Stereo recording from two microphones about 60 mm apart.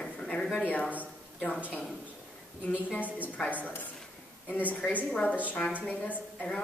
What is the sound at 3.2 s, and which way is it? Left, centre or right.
Speech, left.